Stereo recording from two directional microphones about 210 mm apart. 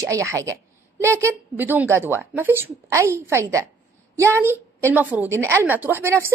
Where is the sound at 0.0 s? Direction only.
15° right (ahead or behind).